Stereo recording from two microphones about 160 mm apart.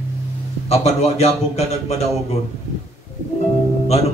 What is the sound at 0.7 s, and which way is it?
A man's voice, 40° left (ahead or behind).